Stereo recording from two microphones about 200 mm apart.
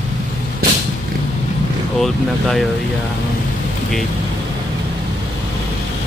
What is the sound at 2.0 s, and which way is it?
Speech, centre (ahead or behind).